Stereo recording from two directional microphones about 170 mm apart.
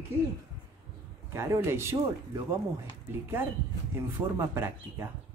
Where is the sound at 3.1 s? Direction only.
15° right (ahead or behind).